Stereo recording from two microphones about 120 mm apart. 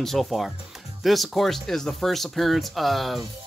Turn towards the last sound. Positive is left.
turn(degrees=0)  # may be behind; listen again after turning